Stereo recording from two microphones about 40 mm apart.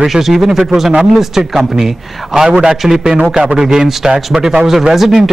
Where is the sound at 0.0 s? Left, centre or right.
Centre.